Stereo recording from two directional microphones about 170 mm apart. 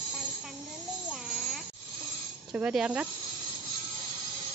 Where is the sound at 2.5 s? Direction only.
5° right (ahead or behind).